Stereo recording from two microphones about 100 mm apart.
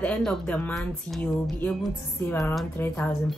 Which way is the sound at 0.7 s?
5° left (ahead or behind).